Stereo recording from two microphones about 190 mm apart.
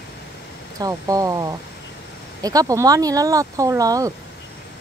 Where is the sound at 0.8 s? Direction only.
20° right (ahead or behind).